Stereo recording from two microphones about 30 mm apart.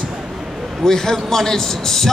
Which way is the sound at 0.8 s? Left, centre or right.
Centre.